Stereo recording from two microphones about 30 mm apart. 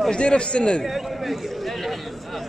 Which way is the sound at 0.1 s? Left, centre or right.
Left.